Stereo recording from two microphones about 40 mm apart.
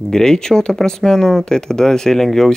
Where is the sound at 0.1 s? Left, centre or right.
Centre.